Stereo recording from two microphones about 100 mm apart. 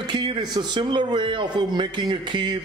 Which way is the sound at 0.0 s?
50° right (ahead or behind).